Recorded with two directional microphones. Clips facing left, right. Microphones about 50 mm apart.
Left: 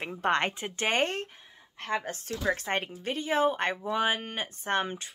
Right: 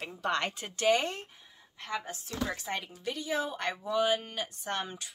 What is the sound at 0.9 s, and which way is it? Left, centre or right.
Speech, left.